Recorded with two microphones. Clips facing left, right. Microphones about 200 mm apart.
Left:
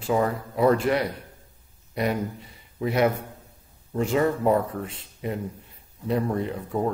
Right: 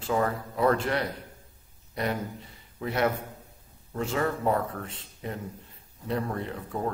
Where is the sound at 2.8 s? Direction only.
15° left (ahead or behind).